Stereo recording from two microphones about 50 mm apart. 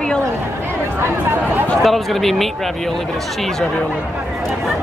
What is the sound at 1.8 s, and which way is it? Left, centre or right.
Speech, centre.